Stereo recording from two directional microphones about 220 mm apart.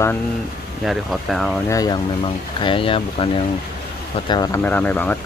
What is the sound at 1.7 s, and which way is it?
Speech, 15° left (ahead or behind).